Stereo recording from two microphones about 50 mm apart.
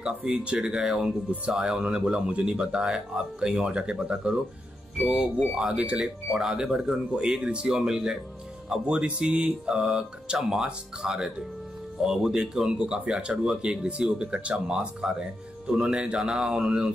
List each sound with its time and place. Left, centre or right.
0.0 s speech: centre